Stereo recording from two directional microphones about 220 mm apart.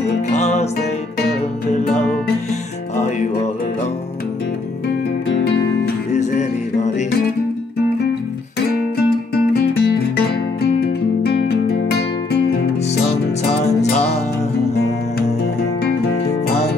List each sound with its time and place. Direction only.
0.3 s music: 30° left (ahead or behind)
1.7 s music: 30° left (ahead or behind)
6.1 s music: 30° left (ahead or behind)
8.9 s music: 45° left (ahead or behind)